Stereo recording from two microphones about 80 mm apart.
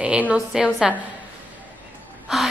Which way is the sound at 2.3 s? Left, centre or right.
Centre.